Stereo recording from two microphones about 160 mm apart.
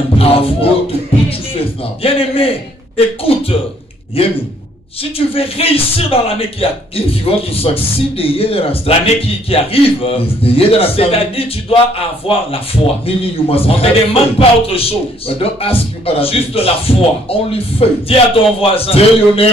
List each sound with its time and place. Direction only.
0.2 s a man's voice: 35° left (ahead or behind)
2.0 s a man's voice: 35° left (ahead or behind)
4.2 s a man's voice: 35° left (ahead or behind)